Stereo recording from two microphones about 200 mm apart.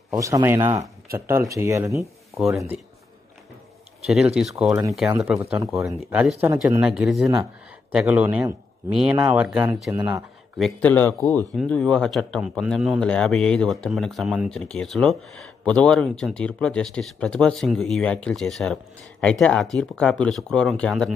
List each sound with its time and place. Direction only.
0.1 s a man's voice: 15° right (ahead or behind)
2.0 s speech: centre (ahead or behind)
4.4 s speech: 5° right (ahead or behind)
5.9 s a man's voice: 5° right (ahead or behind)
10.6 s speech: 5° left (ahead or behind)